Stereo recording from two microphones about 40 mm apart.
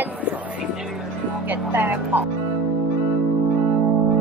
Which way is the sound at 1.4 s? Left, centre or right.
Right.